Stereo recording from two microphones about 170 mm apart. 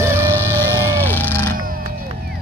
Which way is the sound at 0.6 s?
15° left (ahead or behind).